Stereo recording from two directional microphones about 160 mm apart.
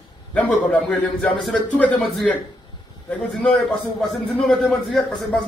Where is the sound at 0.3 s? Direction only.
10° left (ahead or behind).